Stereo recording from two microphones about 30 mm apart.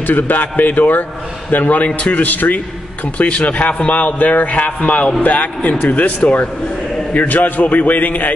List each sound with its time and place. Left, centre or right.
0.0 s a man's voice: left
2.0 s a man's voice: left
3.2 s a man's voice: left
5.2 s a man's voice: left